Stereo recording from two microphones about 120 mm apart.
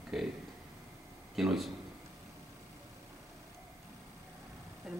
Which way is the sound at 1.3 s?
Centre (ahead or behind).